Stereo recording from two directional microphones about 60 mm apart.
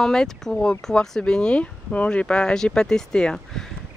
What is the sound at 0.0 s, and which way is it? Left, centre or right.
Speech, centre.